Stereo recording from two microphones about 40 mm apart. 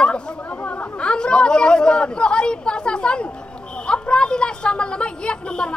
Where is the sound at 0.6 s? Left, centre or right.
Left.